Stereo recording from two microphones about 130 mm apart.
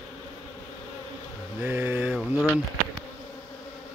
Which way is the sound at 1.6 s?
15° right (ahead or behind).